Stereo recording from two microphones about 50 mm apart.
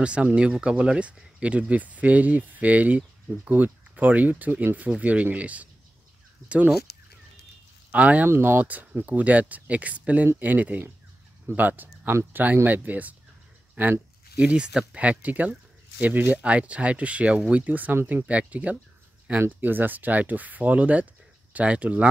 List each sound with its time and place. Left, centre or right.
0.0 s speech: right
7.9 s speech: right
8.3 s speech: right
8.6 s speech: right
14.3 s speech: right
14.7 s speech: centre
15.0 s speech: right